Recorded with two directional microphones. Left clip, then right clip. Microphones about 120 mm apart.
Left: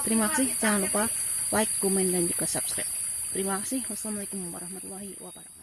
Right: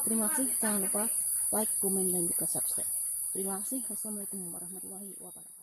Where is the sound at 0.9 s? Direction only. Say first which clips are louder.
Left 7 dB; 20° left (ahead or behind).